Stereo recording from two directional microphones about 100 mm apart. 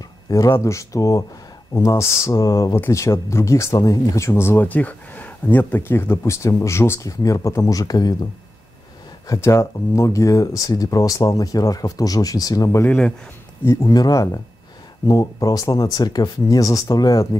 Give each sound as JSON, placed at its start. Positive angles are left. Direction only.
{"t": 0.3, "sound": "speech", "side_deg": 30}
{"t": 4.3, "sound": "speech", "side_deg": 20}
{"t": 9.3, "sound": "speech", "side_deg": 30}
{"t": 12.8, "sound": "speech", "side_deg": 10}
{"t": 13.7, "sound": "speech", "side_deg": 35}